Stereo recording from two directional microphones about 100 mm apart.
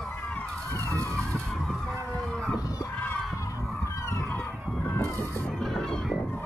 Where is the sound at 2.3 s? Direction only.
5° left (ahead or behind).